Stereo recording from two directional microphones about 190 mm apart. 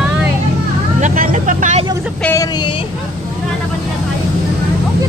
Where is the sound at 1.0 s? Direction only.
45° right (ahead or behind).